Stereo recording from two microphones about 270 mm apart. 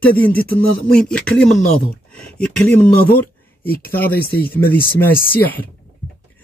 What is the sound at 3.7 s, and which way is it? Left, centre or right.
Speech, left.